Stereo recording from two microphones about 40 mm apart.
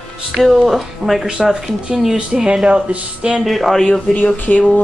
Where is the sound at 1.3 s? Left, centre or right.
Centre.